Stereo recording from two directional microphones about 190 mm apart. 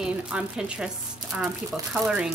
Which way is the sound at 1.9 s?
5° right (ahead or behind).